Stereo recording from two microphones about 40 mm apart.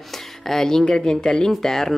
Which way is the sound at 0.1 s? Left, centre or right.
Centre.